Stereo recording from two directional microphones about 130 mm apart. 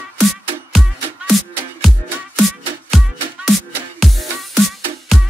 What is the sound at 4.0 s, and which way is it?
Music, centre (ahead or behind).